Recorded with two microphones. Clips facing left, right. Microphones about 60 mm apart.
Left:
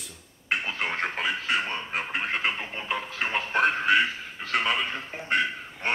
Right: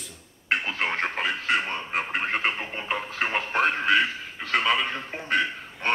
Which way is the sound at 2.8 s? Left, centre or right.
Right.